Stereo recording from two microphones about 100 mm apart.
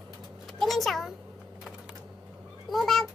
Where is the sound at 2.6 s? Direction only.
Centre (ahead or behind).